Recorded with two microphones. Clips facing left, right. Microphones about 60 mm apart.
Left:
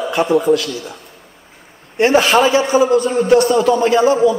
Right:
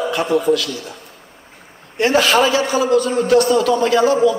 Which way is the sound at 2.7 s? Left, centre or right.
Left.